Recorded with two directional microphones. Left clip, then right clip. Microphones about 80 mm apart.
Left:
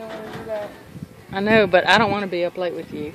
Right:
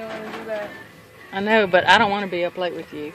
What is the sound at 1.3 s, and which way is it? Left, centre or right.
Speech, left.